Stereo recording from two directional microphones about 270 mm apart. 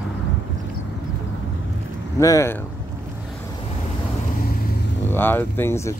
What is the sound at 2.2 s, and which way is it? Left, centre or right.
Speech, centre.